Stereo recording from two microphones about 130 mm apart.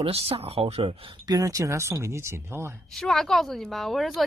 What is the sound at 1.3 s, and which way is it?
Speech, 25° right (ahead or behind).